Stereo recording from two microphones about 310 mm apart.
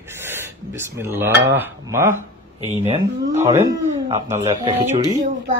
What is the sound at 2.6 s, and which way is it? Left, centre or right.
Speech, right.